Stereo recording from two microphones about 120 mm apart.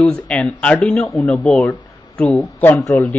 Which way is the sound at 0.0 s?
5° left (ahead or behind).